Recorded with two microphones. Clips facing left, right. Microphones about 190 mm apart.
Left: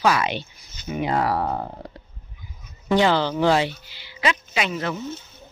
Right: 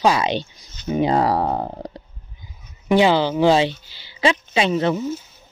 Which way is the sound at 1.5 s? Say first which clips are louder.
Right 4 dB; 40° right (ahead or behind).